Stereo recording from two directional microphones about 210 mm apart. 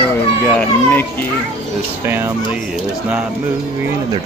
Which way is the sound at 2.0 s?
10° right (ahead or behind).